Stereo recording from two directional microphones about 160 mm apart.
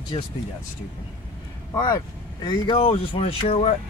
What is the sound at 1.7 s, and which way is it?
Speech, 20° left (ahead or behind).